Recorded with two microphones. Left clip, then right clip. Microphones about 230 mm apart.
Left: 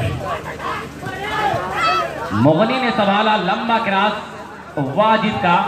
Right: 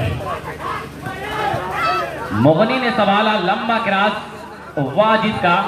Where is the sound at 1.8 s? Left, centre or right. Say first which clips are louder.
Left 1 dB; left.